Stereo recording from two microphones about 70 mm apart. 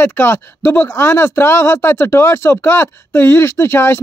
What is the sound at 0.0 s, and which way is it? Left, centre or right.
A man's voice, left.